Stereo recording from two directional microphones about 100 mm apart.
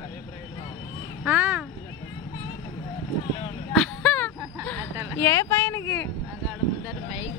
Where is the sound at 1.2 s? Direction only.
15° right (ahead or behind).